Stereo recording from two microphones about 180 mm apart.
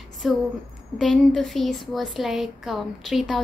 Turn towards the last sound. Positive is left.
turn(degrees=0)  # may be behind; listen again after turning